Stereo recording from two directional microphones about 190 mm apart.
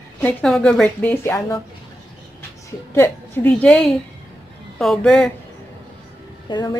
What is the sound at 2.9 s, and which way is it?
A woman's voice, 10° left (ahead or behind).